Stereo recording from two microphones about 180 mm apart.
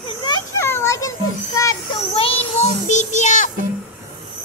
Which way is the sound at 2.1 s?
30° left (ahead or behind).